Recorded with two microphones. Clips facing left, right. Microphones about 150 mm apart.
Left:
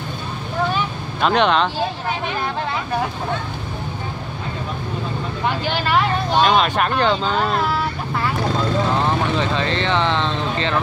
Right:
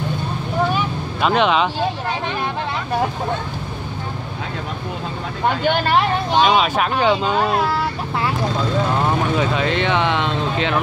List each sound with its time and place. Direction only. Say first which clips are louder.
1.2 s speech: even; 5° right (ahead or behind)
5.6 s speech: right 5 dB; 55° right (ahead or behind)
6.3 s speech: even; centre (ahead or behind)
9.4 s speech: right 2 dB; 10° right (ahead or behind)